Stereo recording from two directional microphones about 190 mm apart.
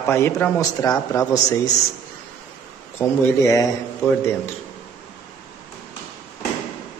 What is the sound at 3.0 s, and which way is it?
Speech, 15° left (ahead or behind).